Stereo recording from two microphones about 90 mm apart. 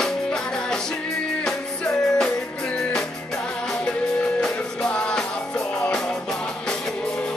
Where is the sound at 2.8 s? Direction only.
5° left (ahead or behind).